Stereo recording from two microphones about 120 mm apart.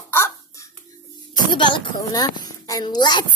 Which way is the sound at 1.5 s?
45° left (ahead or behind).